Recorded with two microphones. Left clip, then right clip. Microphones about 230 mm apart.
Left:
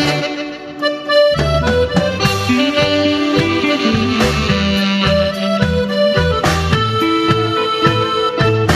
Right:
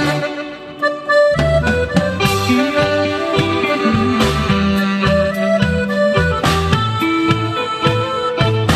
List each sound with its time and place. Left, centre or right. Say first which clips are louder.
1.1 s accordion: even; left
2.5 s music: left 2 dB; left
4.7 s music: left 1 dB; left